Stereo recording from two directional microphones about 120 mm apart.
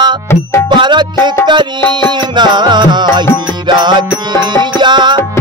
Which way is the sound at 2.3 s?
40° right (ahead or behind).